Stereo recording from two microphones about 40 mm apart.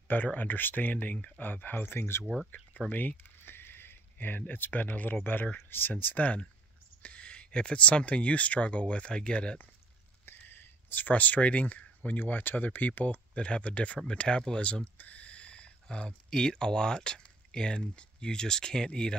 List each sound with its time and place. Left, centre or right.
0.1 s speech: left
2.9 s speech: left
5.6 s speech: left
10.5 s a sound: left
11.1 s speech: left
12.2 s speech: left
13.3 s speech: left
15.0 s a sound: left
16.3 s speech: centre